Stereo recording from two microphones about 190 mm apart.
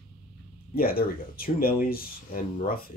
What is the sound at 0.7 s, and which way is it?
Speech, 50° left (ahead or behind).